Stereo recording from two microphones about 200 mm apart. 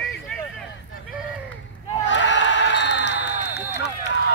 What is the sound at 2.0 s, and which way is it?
Crowd, 65° left (ahead or behind).